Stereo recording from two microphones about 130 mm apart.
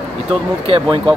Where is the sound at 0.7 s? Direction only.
45° right (ahead or behind).